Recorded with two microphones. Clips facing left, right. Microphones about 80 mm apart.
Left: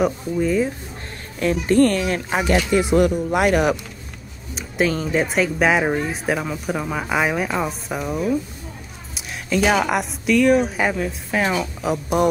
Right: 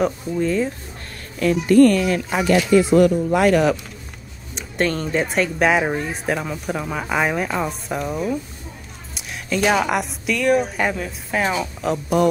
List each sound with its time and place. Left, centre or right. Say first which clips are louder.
0.0 s speech: left 1 dB; centre
1.4 s a woman's voice: right 3 dB; left
2.2 s speech: right 1 dB; left
4.6 s speech: left 1 dB; centre